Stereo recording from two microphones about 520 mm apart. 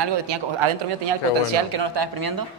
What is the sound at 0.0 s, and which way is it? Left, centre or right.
Speech, right.